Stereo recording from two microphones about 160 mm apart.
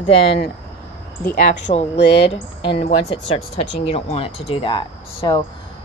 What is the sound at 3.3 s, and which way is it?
A woman's voice, 40° left (ahead or behind).